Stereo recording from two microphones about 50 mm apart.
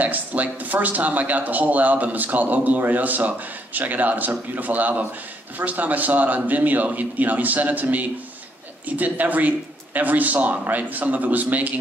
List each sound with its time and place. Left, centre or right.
0.0 s speech: right